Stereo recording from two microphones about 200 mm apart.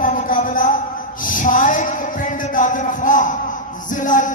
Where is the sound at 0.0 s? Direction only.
40° left (ahead or behind).